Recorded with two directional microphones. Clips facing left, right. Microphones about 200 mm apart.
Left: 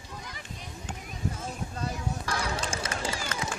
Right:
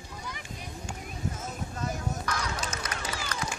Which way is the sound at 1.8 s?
30° left (ahead or behind).